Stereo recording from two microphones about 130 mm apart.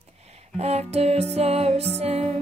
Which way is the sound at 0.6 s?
55° right (ahead or behind).